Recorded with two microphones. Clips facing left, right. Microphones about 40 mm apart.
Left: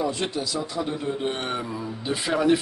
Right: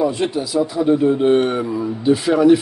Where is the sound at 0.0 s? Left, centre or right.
Centre.